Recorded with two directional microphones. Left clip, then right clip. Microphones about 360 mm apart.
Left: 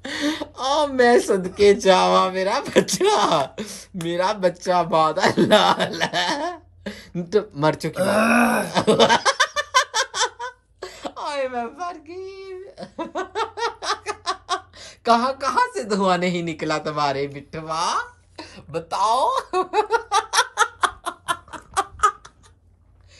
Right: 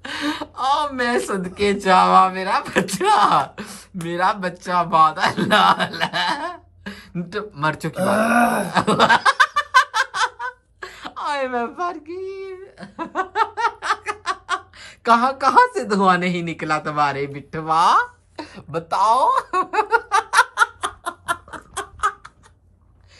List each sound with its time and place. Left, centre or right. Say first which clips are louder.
0.0 s speech: even; centre
20.5 s giggle: right 1 dB; centre
21.0 s a sound: right 1 dB; centre